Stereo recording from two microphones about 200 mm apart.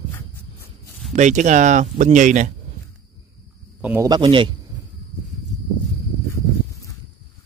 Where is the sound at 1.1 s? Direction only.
35° right (ahead or behind).